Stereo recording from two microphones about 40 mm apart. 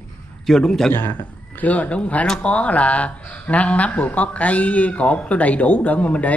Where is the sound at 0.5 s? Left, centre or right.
Centre.